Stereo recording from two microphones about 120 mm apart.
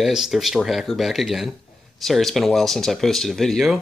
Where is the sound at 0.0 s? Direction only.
5° right (ahead or behind).